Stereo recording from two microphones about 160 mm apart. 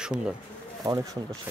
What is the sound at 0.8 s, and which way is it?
Speech, 25° right (ahead or behind).